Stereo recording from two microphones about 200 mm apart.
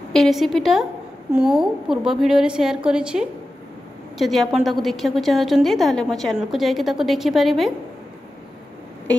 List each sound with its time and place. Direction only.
0.1 s a woman's voice: centre (ahead or behind)